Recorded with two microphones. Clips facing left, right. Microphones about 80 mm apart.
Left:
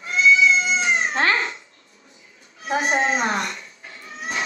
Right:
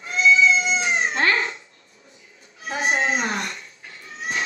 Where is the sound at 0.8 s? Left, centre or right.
Left.